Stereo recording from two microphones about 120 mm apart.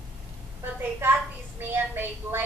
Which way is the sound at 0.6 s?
20° right (ahead or behind).